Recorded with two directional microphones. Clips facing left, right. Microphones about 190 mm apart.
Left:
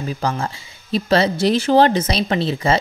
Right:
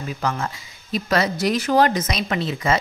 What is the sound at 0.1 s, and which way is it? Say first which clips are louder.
Speech: left 1 dB; 30° left (ahead or behind).